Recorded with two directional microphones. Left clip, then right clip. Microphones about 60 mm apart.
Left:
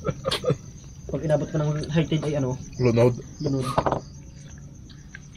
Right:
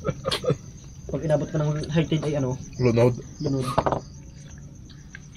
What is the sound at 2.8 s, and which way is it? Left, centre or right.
Speech, left.